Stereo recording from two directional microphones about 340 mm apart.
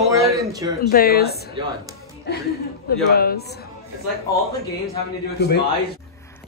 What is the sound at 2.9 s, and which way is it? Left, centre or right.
Speech, left.